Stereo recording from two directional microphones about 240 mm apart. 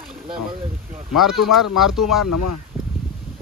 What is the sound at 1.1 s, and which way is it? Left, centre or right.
Speech, centre.